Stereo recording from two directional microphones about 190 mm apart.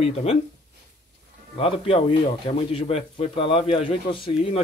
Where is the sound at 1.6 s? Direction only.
30° left (ahead or behind).